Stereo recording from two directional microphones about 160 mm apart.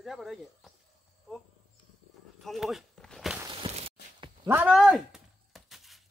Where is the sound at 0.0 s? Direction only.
Centre (ahead or behind).